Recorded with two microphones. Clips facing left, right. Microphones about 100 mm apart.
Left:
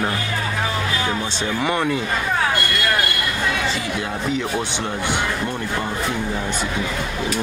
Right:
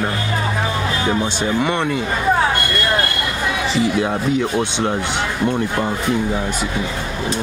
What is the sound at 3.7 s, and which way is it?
Speech, 20° right (ahead or behind).